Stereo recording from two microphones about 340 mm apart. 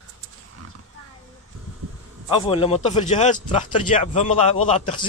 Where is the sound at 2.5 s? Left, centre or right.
Centre.